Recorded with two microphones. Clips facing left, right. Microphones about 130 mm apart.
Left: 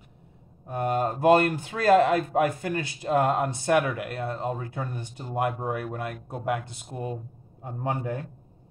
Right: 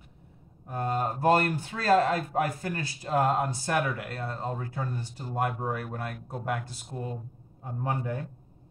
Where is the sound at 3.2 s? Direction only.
60° left (ahead or behind).